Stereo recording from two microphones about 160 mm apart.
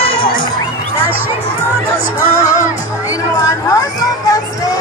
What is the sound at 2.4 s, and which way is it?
Music, 20° left (ahead or behind).